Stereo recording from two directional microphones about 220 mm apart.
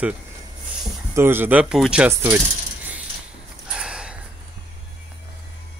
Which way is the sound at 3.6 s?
5° right (ahead or behind).